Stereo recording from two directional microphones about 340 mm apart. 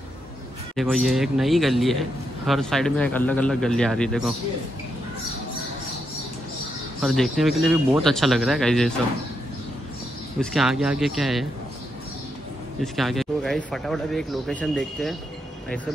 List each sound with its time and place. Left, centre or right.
0.7 s a man's voice: centre
7.0 s a man's voice: centre
10.4 s a man's voice: centre
12.8 s a man's voice: centre